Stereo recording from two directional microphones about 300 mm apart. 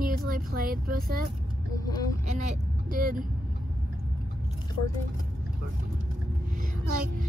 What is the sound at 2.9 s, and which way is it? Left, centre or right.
Speech, right.